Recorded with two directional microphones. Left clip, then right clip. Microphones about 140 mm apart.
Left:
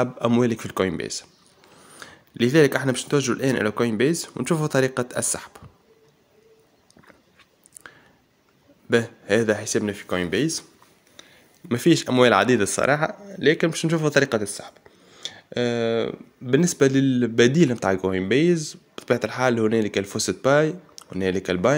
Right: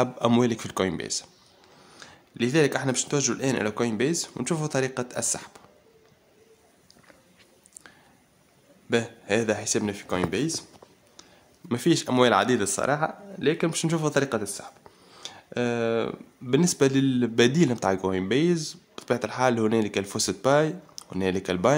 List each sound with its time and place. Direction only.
0.4 s speech: 5° left (ahead or behind)
1.9 s speech: 25° left (ahead or behind)
7.8 s a sound: 15° left (ahead or behind)
8.9 s speech: 15° left (ahead or behind)
11.7 s speech: 15° left (ahead or behind)
14.8 s whispering: 5° right (ahead or behind)
15.2 s speech: 5° left (ahead or behind)